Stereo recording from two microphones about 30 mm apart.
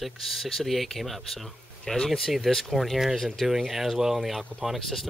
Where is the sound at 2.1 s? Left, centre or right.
Centre.